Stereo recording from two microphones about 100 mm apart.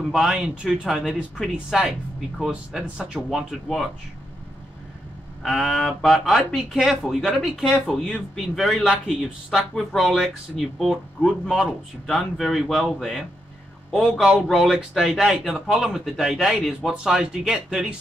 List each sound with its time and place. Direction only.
0.1 s speech: 5° right (ahead or behind)
5.4 s speech: centre (ahead or behind)